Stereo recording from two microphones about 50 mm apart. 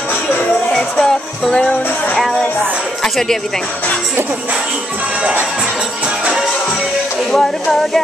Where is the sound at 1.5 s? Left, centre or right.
Centre.